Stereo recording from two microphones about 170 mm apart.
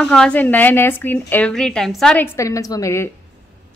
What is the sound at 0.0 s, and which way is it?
A woman's voice, 5° left (ahead or behind).